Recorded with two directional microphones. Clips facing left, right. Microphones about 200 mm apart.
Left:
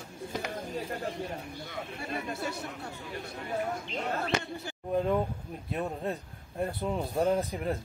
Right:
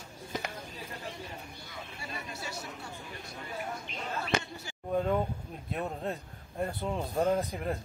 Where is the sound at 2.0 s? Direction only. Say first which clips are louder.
Left 7 dB; 55° left (ahead or behind).